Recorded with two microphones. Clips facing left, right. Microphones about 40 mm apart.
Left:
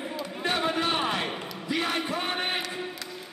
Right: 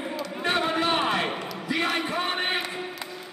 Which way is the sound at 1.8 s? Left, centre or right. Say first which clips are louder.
Right 3 dB; centre.